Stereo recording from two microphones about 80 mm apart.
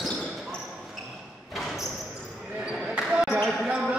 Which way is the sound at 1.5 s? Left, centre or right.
Centre.